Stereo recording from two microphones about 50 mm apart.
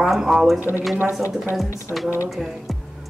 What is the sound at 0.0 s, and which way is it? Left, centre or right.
Speech, centre.